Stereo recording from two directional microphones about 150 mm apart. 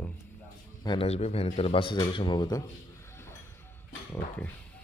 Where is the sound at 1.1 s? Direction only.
45° left (ahead or behind); by 2.6 s 25° left (ahead or behind).